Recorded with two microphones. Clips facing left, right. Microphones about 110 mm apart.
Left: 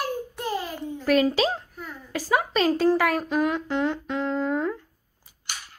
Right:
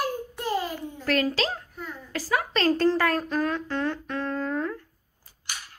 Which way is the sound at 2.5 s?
10° left (ahead or behind).